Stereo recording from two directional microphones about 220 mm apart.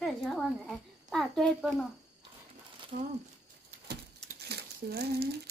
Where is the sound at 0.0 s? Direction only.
Centre (ahead or behind).